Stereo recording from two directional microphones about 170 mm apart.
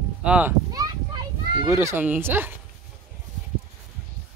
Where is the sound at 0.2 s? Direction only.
10° right (ahead or behind).